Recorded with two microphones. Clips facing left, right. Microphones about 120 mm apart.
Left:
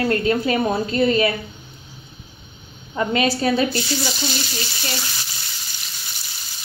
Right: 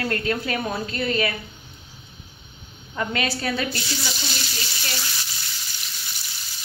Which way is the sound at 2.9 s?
20° left (ahead or behind).